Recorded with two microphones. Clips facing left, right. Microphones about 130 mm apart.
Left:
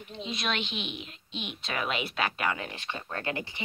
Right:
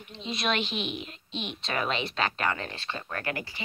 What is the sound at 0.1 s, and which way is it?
A woman's voice, centre (ahead or behind).